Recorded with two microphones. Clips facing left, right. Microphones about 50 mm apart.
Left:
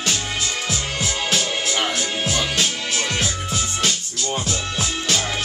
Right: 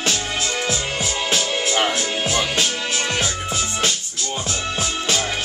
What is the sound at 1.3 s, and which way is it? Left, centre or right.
Music, right.